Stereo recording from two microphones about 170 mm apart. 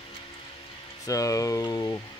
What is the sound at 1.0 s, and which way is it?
Speech, 20° left (ahead or behind).